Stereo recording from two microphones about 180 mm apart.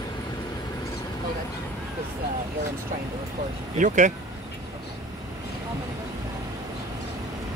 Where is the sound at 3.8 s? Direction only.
45° right (ahead or behind).